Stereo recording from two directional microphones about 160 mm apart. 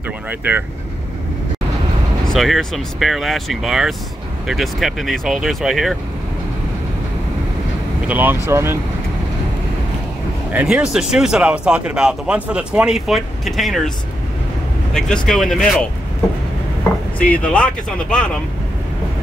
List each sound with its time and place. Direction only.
0.3 s speech: 10° right (ahead or behind)
2.2 s speech: centre (ahead or behind)
8.1 s speech: 10° right (ahead or behind)
10.5 s speech: 5° right (ahead or behind)
15.2 s speech: 5° left (ahead or behind)
17.2 s speech: 10° left (ahead or behind)